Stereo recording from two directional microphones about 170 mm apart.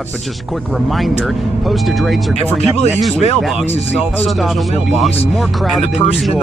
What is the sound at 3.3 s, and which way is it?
Speech, centre (ahead or behind).